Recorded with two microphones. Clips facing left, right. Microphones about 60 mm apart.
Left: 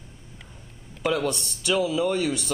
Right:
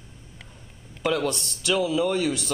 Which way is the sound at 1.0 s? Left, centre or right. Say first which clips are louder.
Even; centre.